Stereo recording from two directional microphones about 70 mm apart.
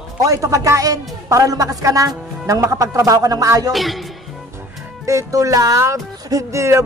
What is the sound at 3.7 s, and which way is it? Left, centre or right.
Speech, centre.